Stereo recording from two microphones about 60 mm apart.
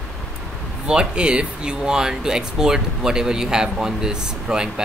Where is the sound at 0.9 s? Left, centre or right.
Centre.